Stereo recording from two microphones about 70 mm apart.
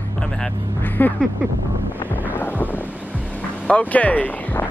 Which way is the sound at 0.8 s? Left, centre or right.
Left.